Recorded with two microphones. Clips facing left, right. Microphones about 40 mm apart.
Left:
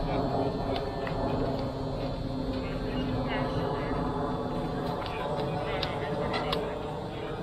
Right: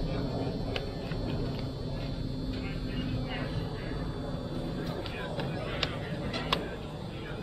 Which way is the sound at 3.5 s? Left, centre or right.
Left.